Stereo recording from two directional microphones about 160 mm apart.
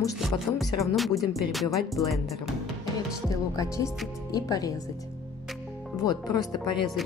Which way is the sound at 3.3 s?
20° left (ahead or behind).